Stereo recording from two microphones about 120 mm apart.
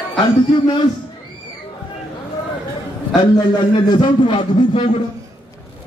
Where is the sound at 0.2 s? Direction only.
40° left (ahead or behind).